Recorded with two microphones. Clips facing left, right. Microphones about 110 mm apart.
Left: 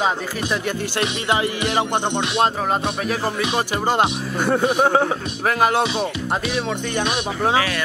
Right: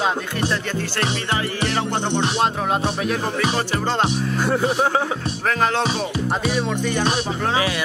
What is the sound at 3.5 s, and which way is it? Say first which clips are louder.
Music: left 2 dB; 10° left (ahead or behind).